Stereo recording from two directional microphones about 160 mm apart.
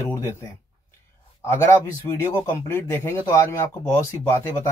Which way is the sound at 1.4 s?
15° left (ahead or behind).